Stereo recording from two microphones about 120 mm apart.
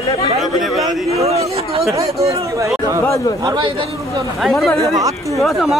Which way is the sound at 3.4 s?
40° right (ahead or behind).